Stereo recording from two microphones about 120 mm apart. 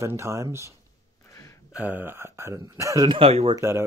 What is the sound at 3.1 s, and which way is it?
Speech, 55° right (ahead or behind).